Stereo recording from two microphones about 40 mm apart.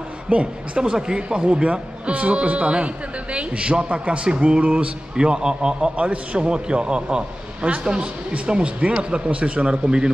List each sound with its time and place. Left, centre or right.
0.3 s a man's voice: right